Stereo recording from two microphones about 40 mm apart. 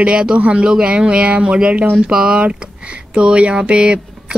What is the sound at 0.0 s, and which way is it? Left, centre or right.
Speech, right.